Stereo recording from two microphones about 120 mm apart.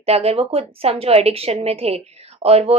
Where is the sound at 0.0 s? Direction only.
60° right (ahead or behind).